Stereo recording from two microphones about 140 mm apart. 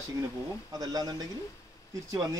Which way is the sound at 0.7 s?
30° right (ahead or behind).